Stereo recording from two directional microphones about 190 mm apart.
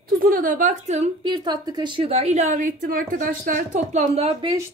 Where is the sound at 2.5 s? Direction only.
45° right (ahead or behind).